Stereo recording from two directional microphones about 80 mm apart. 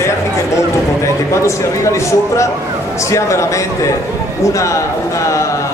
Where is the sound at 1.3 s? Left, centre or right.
Left.